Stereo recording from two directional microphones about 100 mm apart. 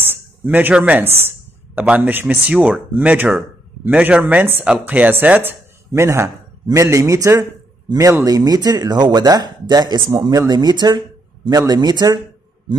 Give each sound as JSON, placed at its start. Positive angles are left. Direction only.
{"t": 0.1, "sound": "a sound", "side_deg": -20}
{"t": 1.8, "sound": "speech", "side_deg": -20}
{"t": 5.9, "sound": "a man's voice", "side_deg": -30}